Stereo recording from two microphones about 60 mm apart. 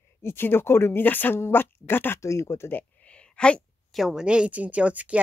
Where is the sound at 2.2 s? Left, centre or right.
Left.